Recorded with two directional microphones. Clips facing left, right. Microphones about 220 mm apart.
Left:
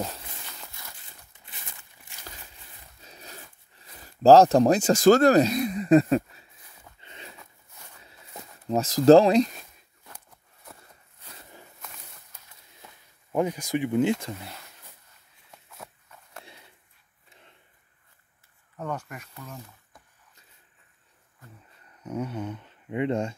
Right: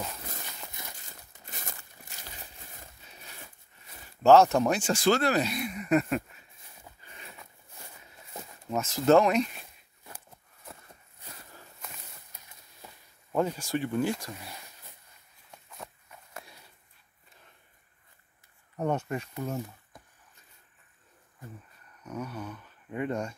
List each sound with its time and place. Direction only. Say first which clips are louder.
0.7 s a sound: right 2 dB; 20° right (ahead or behind)
1.3 s a sound: right 6 dB; 40° right (ahead or behind)
3.0 s zipper: left 5 dB; 40° left (ahead or behind)
4.0 s speech: left 4 dB; 35° left (ahead or behind)
7.0 s livestock: left 6 dB; 25° left (ahead or behind)
8.6 s speech: left 7 dB; 35° left (ahead or behind)
13.3 s speech: left 2 dB; 15° left (ahead or behind)
15.5 s a sound: even; 5° left (ahead or behind)
18.8 s speech: right 5 dB; 25° right (ahead or behind)
22.0 s speech: left 6 dB; 25° left (ahead or behind)